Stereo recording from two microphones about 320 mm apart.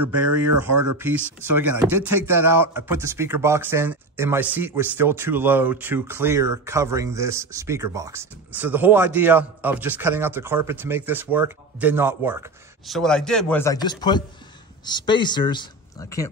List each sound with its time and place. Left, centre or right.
0.0 s speech: right
1.2 s speech: centre